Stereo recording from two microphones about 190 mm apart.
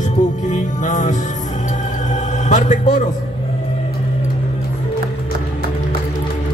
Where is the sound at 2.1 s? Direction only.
40° left (ahead or behind).